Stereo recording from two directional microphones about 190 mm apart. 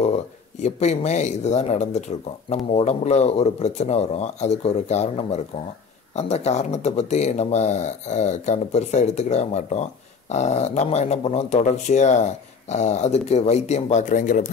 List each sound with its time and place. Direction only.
0.0 s speech: 35° left (ahead or behind)